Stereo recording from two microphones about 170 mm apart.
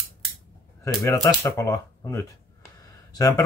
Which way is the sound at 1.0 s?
15° left (ahead or behind).